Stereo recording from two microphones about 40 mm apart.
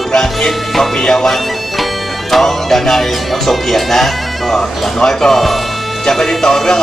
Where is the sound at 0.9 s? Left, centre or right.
Centre.